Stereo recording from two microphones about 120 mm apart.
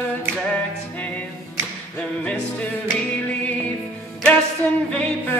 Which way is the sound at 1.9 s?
10° left (ahead or behind).